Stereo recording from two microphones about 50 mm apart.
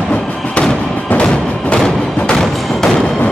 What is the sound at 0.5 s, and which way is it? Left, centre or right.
Fireworks, centre.